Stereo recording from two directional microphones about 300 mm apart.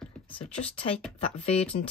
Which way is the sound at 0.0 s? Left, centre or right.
Centre.